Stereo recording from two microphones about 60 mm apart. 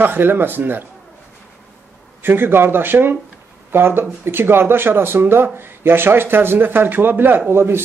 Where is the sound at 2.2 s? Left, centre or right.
Right.